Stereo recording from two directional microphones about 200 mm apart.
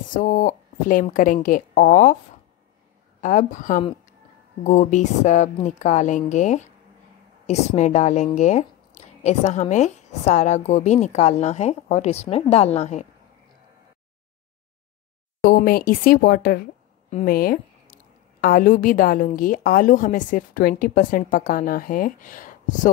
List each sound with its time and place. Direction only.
0.1 s speech: 40° left (ahead or behind)
3.2 s speech: 40° left (ahead or behind)
3.8 s speech: 25° left (ahead or behind)
15.4 s a woman's voice: 45° left (ahead or behind)